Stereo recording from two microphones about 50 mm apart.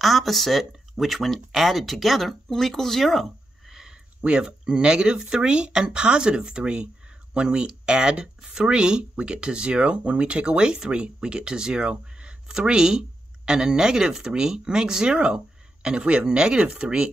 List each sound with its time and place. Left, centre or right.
0.0 s speech: centre
4.2 s speech: centre